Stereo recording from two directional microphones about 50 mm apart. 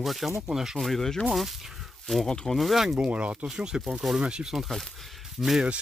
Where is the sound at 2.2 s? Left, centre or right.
Centre.